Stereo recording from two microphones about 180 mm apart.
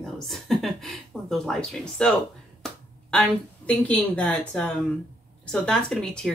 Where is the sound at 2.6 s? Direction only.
5° left (ahead or behind).